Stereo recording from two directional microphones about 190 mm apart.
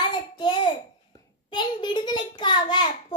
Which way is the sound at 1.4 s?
25° left (ahead or behind).